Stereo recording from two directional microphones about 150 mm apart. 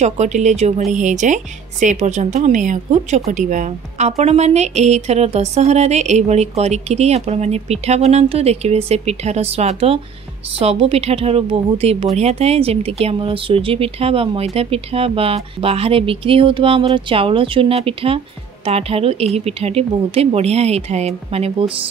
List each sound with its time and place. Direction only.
0.0 s a woman's voice: 50° right (ahead or behind)